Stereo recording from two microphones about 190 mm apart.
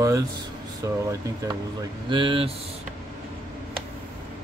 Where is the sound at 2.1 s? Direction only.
25° right (ahead or behind).